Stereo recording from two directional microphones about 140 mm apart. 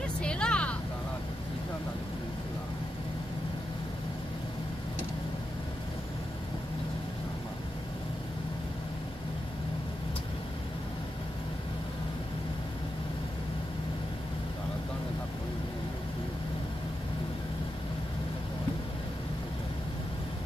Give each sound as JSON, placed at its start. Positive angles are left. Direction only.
{"t": 0.2, "sound": "vehicle", "side_deg": 5}